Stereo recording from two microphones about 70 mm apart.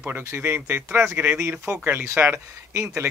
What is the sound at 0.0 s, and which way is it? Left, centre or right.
Speech, right.